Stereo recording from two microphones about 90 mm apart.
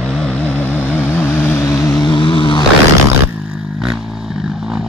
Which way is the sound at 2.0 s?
60° left (ahead or behind).